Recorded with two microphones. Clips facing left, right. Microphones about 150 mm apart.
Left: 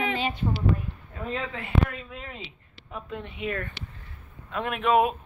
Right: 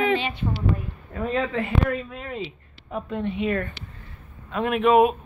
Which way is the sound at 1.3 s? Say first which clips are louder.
Right 4 dB; 60° right (ahead or behind).